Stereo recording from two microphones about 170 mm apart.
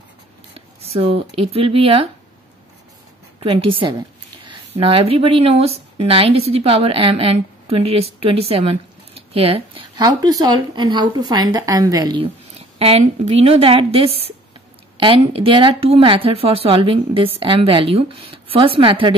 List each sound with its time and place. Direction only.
0.6 s a sound: 35° right (ahead or behind)
1.3 s speech: 35° right (ahead or behind)
3.3 s speech: 30° right (ahead or behind)